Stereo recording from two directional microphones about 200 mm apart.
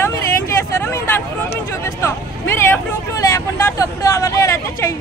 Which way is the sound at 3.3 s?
15° left (ahead or behind).